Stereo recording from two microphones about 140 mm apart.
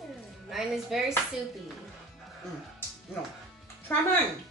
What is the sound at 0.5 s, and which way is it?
Speech, centre (ahead or behind).